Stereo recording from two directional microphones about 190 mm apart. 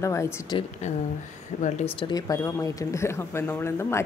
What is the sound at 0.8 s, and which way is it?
Speech, 35° left (ahead or behind).